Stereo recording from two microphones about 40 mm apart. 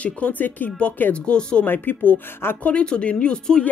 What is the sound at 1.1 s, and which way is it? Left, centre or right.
Speech, left.